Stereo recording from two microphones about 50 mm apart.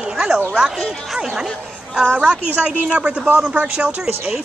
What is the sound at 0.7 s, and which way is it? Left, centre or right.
Speech, centre.